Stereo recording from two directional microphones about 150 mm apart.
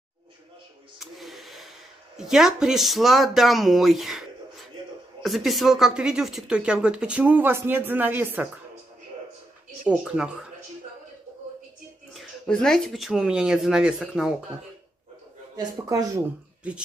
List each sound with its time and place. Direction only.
0.9 s a sound: centre (ahead or behind)
2.1 s a woman's voice: 5° right (ahead or behind)
9.8 s speech: 5° right (ahead or behind)
12.1 s speech: 5° left (ahead or behind)
15.5 s speech: 25° right (ahead or behind)